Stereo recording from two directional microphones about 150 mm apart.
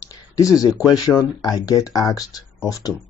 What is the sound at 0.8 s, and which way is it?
Speech, 25° left (ahead or behind).